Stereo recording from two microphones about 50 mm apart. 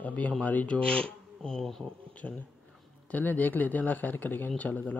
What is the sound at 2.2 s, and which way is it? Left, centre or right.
A man's voice, left.